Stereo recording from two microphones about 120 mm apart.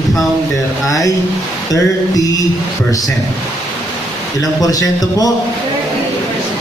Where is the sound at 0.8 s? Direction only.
30° left (ahead or behind).